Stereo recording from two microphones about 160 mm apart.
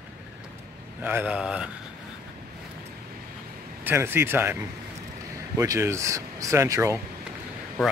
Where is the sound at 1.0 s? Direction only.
10° right (ahead or behind).